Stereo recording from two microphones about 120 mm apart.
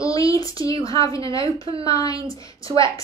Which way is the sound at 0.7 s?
50° right (ahead or behind).